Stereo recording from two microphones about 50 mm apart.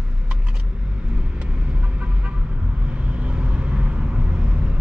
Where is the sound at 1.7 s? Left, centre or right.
Right.